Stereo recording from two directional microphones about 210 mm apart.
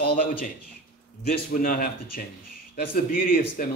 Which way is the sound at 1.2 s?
40° left (ahead or behind).